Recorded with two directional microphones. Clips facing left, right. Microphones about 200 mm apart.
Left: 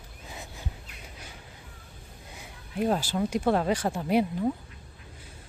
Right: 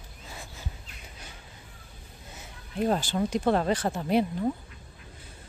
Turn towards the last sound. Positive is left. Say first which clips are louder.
# even
turn(degrees=10)  # may be behind; listen again after turning